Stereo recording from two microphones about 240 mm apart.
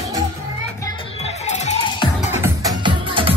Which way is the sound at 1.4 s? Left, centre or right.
Left.